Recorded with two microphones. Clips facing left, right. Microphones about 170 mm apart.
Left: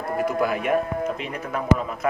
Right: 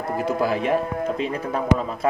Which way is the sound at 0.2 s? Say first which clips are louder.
Right 1 dB; 30° right (ahead or behind).